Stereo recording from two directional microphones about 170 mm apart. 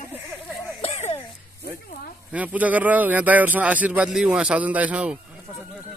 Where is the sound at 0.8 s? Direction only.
35° left (ahead or behind).